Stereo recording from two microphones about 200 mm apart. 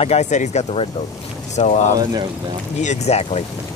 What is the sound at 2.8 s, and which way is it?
Speech, 35° left (ahead or behind).